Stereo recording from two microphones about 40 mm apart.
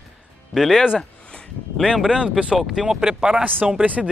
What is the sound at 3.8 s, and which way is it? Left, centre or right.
Speech, right.